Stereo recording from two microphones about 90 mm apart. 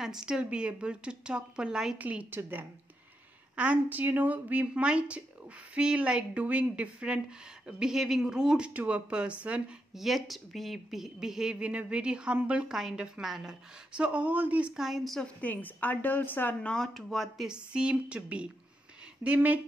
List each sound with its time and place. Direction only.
0.0 s a woman's voice: 5° right (ahead or behind)
9.9 s speech: centre (ahead or behind)
15.4 s a woman's voice: 20° left (ahead or behind)
16.7 s speech: 5° left (ahead or behind)
17.5 s speech: 10° right (ahead or behind)